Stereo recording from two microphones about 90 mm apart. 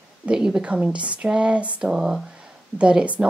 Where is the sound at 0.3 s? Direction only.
10° right (ahead or behind).